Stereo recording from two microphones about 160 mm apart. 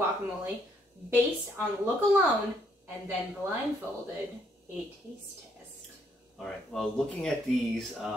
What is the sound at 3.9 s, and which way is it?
Speech, 15° left (ahead or behind).